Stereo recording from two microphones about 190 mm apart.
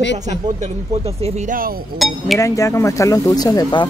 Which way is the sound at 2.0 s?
Centre (ahead or behind).